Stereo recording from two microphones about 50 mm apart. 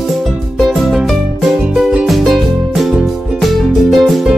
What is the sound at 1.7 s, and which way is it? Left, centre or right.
Music, right.